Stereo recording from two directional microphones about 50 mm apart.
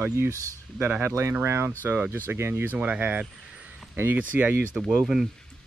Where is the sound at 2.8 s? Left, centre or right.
Right.